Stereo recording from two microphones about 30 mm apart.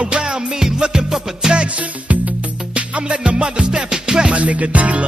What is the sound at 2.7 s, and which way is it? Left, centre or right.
Music, right.